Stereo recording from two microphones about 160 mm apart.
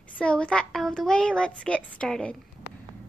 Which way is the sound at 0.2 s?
5° left (ahead or behind).